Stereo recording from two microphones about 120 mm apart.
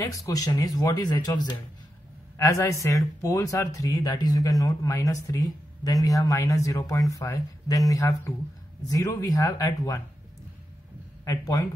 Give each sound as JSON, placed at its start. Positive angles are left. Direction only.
{"t": 0.1, "sound": "speech", "side_deg": 30}
{"t": 11.2, "sound": "speech", "side_deg": 30}